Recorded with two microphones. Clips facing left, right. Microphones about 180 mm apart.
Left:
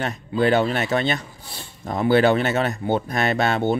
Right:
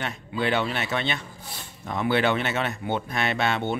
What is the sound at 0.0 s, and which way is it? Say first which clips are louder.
Speech: left 7 dB; 40° left (ahead or behind).